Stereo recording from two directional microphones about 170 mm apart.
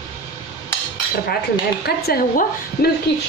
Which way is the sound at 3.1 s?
80° left.